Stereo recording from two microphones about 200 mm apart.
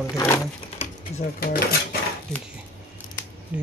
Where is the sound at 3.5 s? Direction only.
5° right (ahead or behind).